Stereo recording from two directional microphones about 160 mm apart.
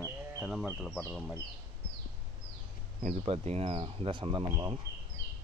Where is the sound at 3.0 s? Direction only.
40° right (ahead or behind).